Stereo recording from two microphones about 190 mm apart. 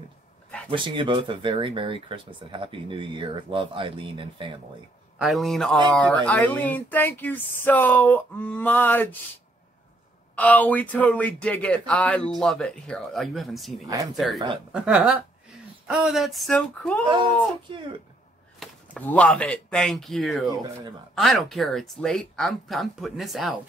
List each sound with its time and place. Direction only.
0.7 s speech: 25° right (ahead or behind)
5.2 s speech: centre (ahead or behind)
10.3 s speech: 10° left (ahead or behind)
17.0 s speech: 25° right (ahead or behind)
18.6 s speech: 10° left (ahead or behind)